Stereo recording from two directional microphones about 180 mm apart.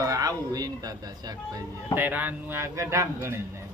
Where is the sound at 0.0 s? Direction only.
20° right (ahead or behind).